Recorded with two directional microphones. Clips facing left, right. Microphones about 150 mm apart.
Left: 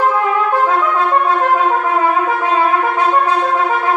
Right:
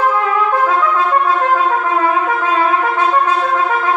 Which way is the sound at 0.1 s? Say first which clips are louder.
Even; 20° left (ahead or behind).